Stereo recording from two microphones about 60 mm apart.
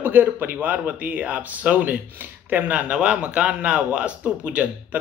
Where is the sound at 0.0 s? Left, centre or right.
Right.